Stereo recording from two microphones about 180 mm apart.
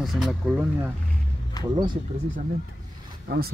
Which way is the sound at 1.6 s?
20° left (ahead or behind).